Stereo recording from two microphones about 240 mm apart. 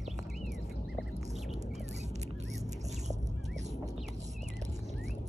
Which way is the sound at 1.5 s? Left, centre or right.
Right.